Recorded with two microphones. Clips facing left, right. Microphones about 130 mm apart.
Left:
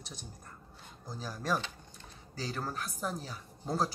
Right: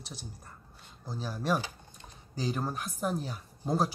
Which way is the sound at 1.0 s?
10° right (ahead or behind).